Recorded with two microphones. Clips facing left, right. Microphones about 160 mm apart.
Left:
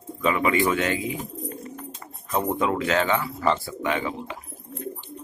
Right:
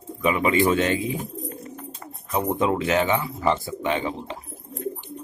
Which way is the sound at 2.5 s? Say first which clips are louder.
Right 2 dB; 25° right (ahead or behind).